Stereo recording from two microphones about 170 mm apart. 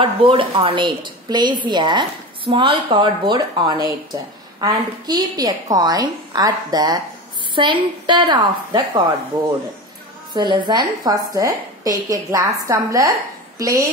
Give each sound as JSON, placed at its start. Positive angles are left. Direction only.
{"t": 0.0, "sound": "a woman's voice", "side_deg": -30}
{"t": 10.3, "sound": "a woman's voice", "side_deg": -25}